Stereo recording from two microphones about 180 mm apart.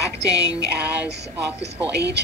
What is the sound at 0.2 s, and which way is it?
Music, 70° right (ahead or behind).